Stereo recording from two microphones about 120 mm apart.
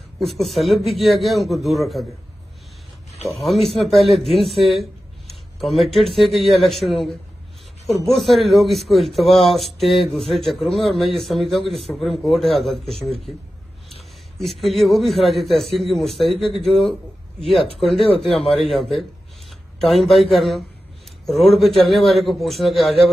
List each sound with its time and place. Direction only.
0.2 s a man's voice: centre (ahead or behind)
3.3 s a man's voice: centre (ahead or behind)
14.4 s a man's voice: centre (ahead or behind)